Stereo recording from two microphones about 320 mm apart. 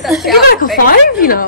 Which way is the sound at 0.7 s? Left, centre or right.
Left.